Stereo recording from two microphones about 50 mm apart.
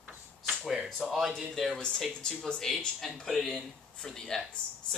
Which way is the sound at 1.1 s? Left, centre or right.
Centre.